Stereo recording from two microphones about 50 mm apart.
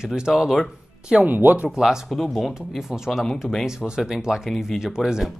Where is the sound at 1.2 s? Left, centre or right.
Right.